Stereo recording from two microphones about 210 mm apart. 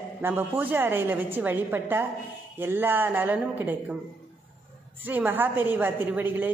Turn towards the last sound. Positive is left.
turn(degrees=-10)  # may be behind; listen again after turning